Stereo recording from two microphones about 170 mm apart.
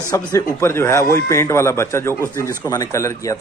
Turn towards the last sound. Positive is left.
turn(degrees=15)  # may be behind; listen again after turning